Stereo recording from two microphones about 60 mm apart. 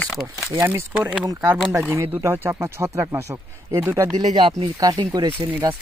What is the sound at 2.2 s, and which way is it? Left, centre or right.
Speech, right.